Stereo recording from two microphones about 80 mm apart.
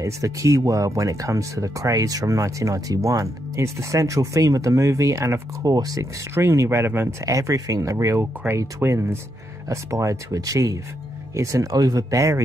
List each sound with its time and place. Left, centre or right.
0.0 s speech: right
5.7 s speech: right
6.3 s speech: right
7.2 s speech: right